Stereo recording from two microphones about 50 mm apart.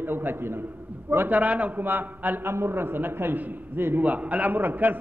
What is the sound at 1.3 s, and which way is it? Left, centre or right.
A man's voice, right.